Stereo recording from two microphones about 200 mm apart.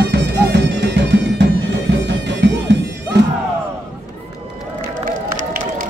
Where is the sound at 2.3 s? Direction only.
60° right (ahead or behind).